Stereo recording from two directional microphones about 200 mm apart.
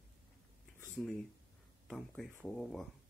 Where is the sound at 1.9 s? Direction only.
Centre (ahead or behind).